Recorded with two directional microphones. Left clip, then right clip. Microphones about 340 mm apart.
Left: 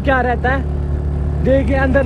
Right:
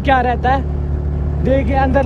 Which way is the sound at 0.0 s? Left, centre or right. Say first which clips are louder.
Right 1 dB; right.